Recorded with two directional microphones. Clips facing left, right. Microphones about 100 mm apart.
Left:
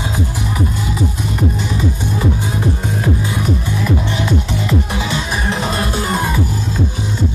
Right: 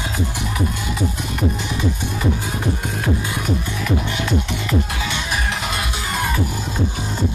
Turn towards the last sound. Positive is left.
turn(degrees=35)  # may be behind; listen again after turning